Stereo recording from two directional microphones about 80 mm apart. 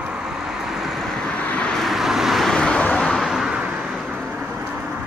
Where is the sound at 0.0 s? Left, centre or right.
Centre.